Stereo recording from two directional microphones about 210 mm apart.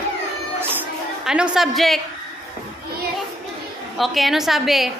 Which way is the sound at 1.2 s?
5° right (ahead or behind).